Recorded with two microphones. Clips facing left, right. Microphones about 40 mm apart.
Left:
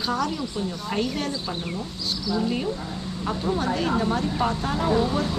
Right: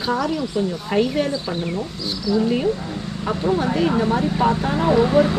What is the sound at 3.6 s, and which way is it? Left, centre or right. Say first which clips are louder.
Speech: right 5 dB; centre.